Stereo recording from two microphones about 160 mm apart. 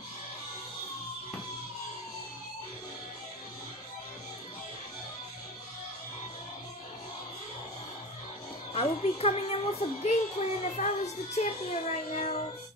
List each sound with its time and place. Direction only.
8.7 s a woman's voice: 40° left (ahead or behind)